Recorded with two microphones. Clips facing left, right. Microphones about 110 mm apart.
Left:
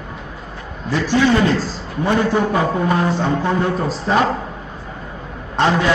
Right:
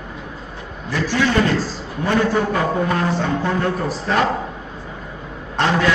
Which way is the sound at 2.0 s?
15° left (ahead or behind).